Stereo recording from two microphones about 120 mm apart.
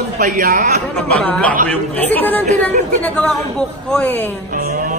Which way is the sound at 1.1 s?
10° left (ahead or behind).